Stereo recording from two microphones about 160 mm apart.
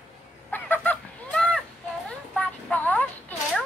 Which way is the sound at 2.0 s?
5° left (ahead or behind).